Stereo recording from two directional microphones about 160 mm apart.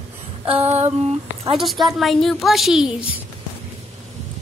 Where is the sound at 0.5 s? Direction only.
40° right (ahead or behind).